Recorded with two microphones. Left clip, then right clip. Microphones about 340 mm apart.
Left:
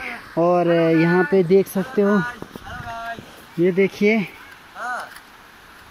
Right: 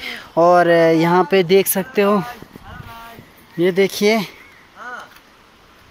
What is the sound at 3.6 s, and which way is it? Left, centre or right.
Speech, right.